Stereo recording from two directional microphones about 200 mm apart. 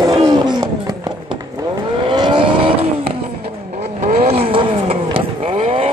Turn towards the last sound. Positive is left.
turn(degrees=-30)  # may be behind; listen again after turning